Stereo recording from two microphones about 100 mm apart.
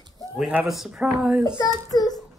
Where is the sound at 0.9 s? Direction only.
15° right (ahead or behind).